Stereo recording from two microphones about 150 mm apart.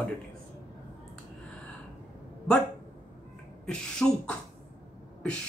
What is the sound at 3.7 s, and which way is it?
Speech, 5° left (ahead or behind).